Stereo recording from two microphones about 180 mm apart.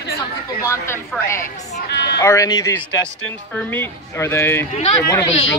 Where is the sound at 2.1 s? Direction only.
20° left (ahead or behind).